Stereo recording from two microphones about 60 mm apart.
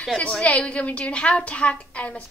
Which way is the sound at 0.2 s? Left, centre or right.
Centre.